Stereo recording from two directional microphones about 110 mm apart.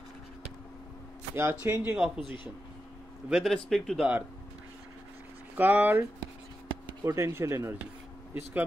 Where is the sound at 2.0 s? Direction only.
Centre (ahead or behind).